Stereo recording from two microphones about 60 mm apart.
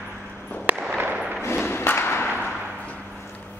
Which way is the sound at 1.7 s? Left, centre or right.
Left.